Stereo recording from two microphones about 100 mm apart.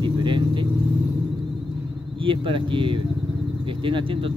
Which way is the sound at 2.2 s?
60° right (ahead or behind).